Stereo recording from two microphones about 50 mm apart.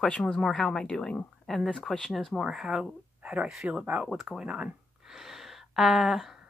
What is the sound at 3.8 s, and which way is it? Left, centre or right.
Speech, right.